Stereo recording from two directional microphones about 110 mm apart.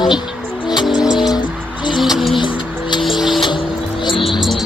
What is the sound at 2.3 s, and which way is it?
Music, 45° left (ahead or behind).